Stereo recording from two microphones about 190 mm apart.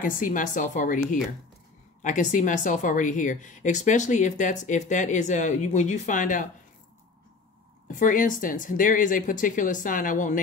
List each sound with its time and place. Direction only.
0.0 s speech: 45° left (ahead or behind)
7.9 s speech: 45° left (ahead or behind)